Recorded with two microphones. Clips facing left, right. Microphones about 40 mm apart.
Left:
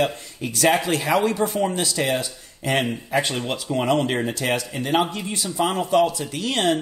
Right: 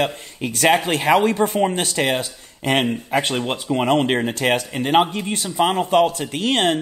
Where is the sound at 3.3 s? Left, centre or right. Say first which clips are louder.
Right 3 dB; right.